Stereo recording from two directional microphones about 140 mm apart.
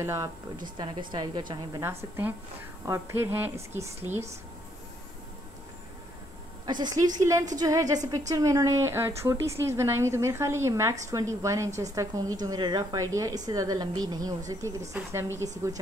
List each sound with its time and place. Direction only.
0.0 s a woman's voice: 20° right (ahead or behind)
0.7 s a woman's voice: 35° right (ahead or behind)
2.8 s a woman's voice: 20° right (ahead or behind)
6.6 s a woman's voice: 30° right (ahead or behind)
15.4 s a woman's voice: 25° right (ahead or behind)